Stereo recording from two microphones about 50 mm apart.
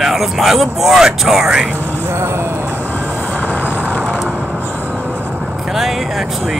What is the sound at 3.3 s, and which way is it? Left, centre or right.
Vehicle, left.